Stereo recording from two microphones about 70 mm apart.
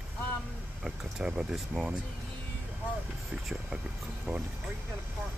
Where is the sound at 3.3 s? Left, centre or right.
Centre.